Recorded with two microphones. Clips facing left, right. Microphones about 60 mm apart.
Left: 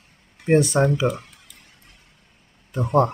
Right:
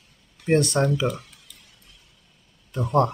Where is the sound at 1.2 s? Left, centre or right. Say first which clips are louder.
Left 2 dB; left.